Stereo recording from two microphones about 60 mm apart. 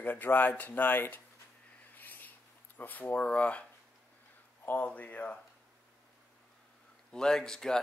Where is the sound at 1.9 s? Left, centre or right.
Left.